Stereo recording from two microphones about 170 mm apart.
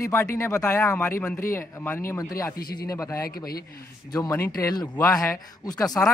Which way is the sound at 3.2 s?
60° left (ahead or behind).